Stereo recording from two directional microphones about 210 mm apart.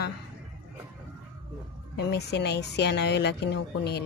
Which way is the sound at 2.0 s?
55° left (ahead or behind).